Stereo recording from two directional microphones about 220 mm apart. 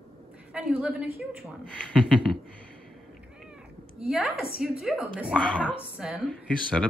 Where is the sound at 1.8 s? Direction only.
5° left (ahead or behind).